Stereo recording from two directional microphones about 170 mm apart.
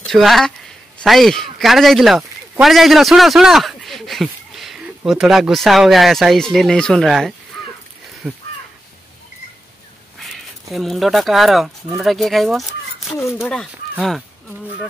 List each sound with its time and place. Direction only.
0.0 s a man's voice: centre (ahead or behind)
10.1 s speech: centre (ahead or behind)